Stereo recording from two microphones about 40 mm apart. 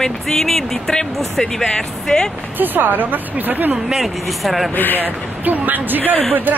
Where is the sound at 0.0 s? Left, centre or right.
Centre.